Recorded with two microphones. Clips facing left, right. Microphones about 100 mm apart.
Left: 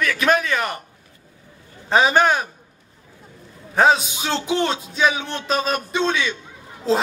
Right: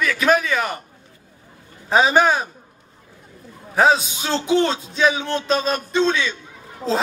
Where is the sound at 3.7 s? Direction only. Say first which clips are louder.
Even; centre (ahead or behind).